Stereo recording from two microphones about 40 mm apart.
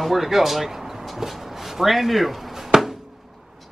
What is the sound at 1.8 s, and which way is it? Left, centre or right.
Speech, centre.